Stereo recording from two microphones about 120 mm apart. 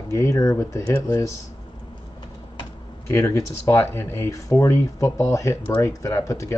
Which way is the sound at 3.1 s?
20° left (ahead or behind).